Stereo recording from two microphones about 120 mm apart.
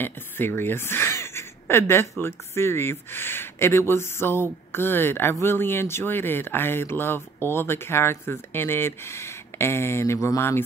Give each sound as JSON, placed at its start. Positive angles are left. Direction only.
{"t": 0.0, "sound": "speech", "side_deg": 20}